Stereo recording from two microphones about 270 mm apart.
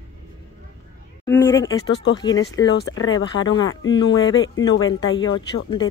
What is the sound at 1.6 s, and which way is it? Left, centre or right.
Speech, left.